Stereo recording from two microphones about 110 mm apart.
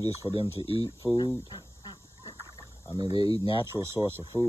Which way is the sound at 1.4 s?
45° left (ahead or behind).